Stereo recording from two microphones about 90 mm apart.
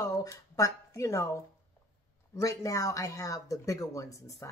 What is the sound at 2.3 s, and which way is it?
A woman's voice, 35° left (ahead or behind).